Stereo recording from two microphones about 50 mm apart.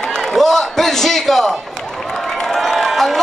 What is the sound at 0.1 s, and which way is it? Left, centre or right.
A man's voice, centre.